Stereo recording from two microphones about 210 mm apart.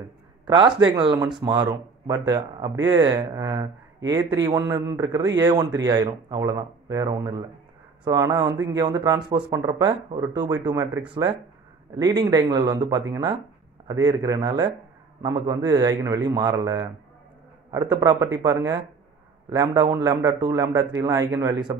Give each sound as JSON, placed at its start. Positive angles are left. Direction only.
{"t": 0.5, "sound": "speech", "side_deg": -20}